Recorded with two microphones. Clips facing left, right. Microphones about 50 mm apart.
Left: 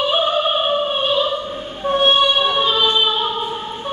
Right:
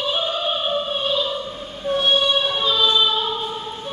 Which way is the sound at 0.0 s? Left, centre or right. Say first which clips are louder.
Left 6 dB; left.